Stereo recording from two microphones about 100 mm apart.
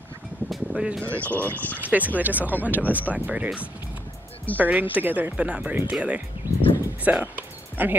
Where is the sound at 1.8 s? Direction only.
15° right (ahead or behind).